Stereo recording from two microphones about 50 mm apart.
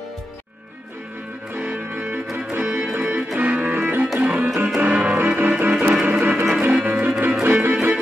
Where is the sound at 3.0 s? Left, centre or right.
Right.